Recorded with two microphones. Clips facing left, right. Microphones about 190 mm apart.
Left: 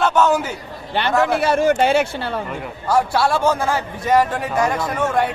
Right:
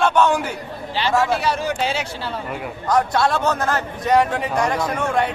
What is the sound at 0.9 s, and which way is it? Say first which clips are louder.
Speech: left 2 dB; 55° left (ahead or behind).